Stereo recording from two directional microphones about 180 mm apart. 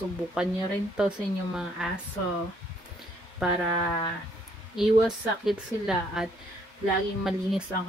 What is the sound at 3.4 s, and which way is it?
Speech, centre (ahead or behind).